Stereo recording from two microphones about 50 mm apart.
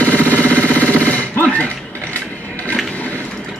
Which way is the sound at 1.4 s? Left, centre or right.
Left.